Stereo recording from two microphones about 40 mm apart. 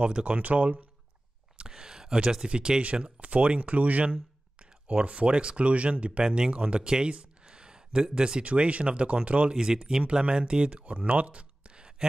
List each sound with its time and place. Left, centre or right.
0.0 s speech: right
1.6 s a sound: centre
2.2 s speech: centre
3.2 s speech: right
6.2 s speech: centre
8.5 s speech: right
9.5 s speech: centre